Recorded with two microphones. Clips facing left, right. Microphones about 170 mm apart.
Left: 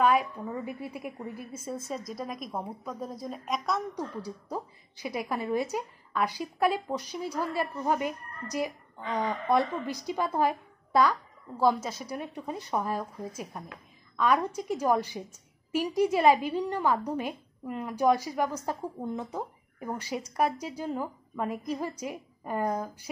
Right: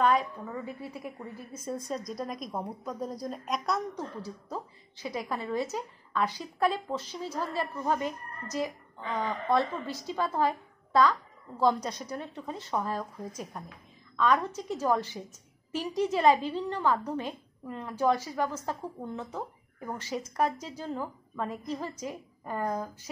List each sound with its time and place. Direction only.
0.0 s a woman's voice: 10° left (ahead or behind)
3.9 s a woman's voice: 15° left (ahead or behind)